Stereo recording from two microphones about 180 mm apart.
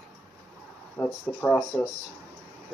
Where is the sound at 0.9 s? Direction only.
10° left (ahead or behind).